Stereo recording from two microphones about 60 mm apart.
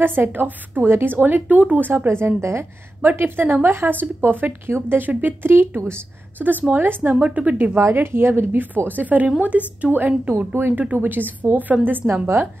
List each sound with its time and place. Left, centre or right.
0.0 s a woman's voice: right
7.7 s a woman's voice: right
12.1 s speech: right